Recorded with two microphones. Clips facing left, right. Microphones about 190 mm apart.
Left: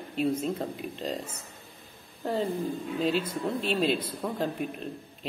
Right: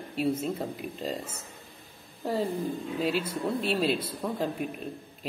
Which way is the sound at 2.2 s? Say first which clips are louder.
Even; 5° right (ahead or behind).